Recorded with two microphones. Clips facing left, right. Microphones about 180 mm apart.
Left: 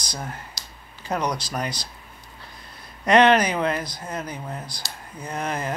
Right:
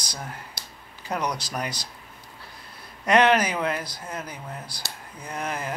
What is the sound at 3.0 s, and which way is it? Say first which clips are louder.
Speech: left 3 dB; 10° right (ahead or behind).